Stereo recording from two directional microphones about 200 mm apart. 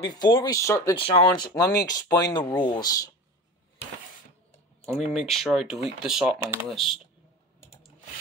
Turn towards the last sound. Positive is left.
turn(degrees=0)  # may be behind; listen again after turning